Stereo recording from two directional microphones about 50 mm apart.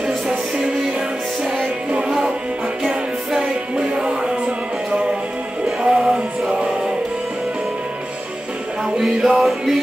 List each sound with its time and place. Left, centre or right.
2.0 s music: centre
5.8 s music: centre
8.9 s music: centre